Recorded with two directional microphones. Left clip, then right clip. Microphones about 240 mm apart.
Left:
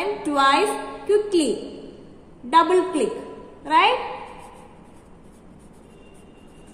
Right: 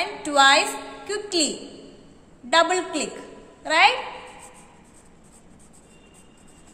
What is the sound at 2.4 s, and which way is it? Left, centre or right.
A woman's voice, right.